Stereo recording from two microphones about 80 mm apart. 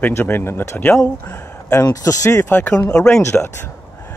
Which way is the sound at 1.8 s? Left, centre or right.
Left.